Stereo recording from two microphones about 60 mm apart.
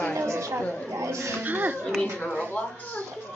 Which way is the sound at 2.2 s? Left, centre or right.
Left.